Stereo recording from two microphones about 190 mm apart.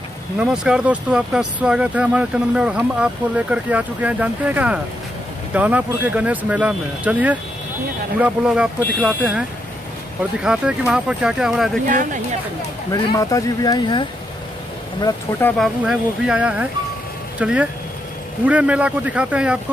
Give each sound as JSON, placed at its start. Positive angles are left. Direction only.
{"t": 0.4, "sound": "speech", "side_deg": -5}
{"t": 11.9, "sound": "speech", "side_deg": -45}
{"t": 12.9, "sound": "speech", "side_deg": 15}
{"t": 15.5, "sound": "speech", "side_deg": 0}